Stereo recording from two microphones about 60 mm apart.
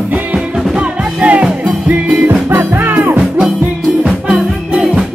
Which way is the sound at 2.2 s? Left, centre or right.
Right.